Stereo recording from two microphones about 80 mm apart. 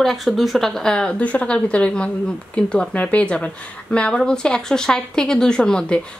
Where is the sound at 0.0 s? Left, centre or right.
Centre.